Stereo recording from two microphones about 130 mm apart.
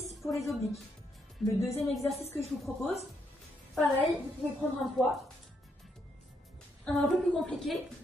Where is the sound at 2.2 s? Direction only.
55° left (ahead or behind).